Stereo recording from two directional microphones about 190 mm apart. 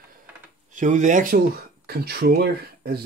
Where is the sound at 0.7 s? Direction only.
40° right (ahead or behind).